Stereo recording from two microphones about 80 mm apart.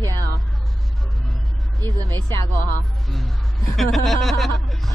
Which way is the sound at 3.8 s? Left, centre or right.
Centre.